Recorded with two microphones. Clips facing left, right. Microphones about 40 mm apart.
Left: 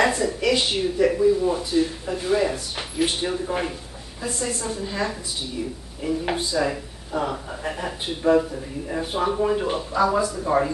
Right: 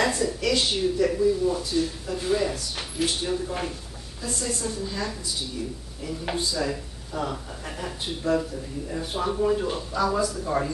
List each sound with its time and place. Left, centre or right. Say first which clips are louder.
0.0 s speech: left 4 dB; centre